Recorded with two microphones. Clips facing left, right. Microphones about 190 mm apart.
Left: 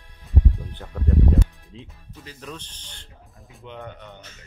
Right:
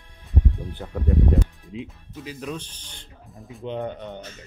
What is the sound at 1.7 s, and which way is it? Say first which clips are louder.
Speech: right 8 dB; 15° right (ahead or behind).